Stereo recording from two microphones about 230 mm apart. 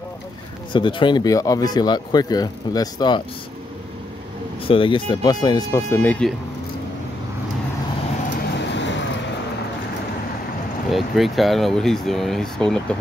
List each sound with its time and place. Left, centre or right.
0.7 s speech: left
4.6 s speech: left; by 6.3 s centre
8.5 s vehicle: left
10.9 s speech: centre